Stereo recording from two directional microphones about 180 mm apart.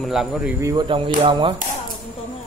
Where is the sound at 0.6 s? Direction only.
20° right (ahead or behind).